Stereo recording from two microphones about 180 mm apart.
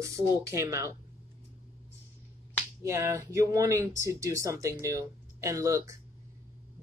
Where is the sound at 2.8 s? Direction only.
15° right (ahead or behind).